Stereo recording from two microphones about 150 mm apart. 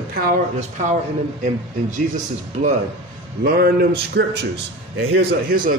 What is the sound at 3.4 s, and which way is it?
Speech, 90° right.